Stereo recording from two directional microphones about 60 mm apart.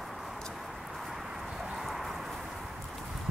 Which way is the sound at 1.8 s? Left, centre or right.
Centre.